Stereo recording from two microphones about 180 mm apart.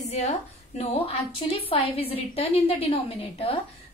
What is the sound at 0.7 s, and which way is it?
A woman's voice, 35° left (ahead or behind).